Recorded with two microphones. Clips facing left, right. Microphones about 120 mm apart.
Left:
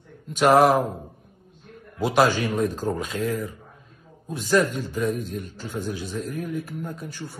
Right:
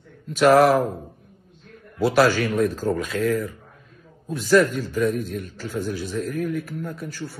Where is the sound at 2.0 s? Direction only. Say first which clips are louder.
Right 2 dB; 15° left (ahead or behind).